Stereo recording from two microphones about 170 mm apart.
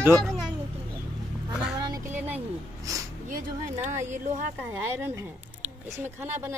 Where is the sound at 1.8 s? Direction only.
25° right (ahead or behind).